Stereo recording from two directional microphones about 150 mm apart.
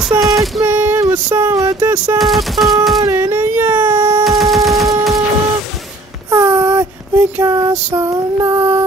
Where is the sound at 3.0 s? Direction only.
15° right (ahead or behind).